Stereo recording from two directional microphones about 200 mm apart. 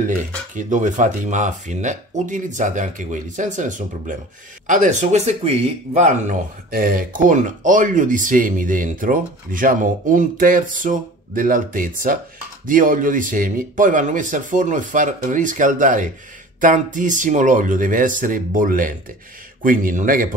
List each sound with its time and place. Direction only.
0.6 s a man's voice: 40° right (ahead or behind)